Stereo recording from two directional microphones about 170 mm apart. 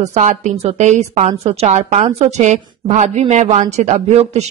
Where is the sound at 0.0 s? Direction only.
45° right (ahead or behind).